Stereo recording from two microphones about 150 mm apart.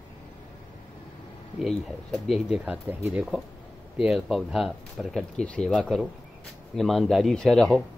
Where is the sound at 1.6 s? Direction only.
Centre (ahead or behind).